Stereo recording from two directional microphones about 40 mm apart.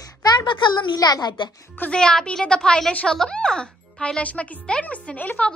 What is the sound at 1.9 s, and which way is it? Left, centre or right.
Speech, centre.